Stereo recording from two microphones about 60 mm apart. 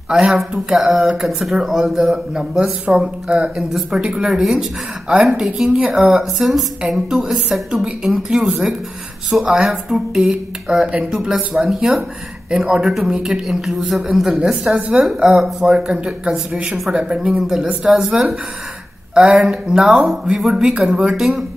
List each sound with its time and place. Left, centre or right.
0.1 s a woman's voice: centre; by 5.9 s right
5.9 s a woman's voice: centre
12.9 s a woman's voice: centre